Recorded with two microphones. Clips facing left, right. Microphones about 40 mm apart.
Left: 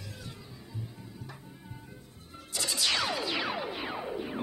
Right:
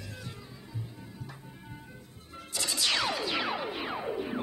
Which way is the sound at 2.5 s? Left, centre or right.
Centre.